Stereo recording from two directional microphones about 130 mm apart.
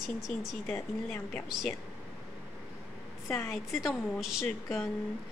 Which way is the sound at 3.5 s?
Centre (ahead or behind).